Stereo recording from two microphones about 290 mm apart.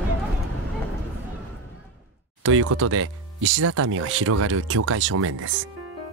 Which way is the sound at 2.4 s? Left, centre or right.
Right.